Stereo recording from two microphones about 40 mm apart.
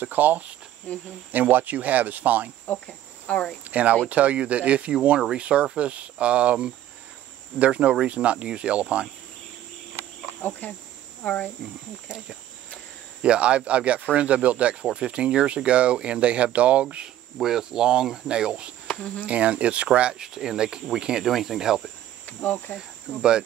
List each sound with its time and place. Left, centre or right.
0.0 s speech: right
0.9 s speech: left
1.3 s speech: right
2.9 s speech: left
3.6 s speech: right
10.6 s insect: left
11.2 s speech: left
12.1 s speech: right
17.4 s speech: centre
19.2 s speech: right
20.2 s speech: centre
21.2 s speech: centre
22.2 s insect: left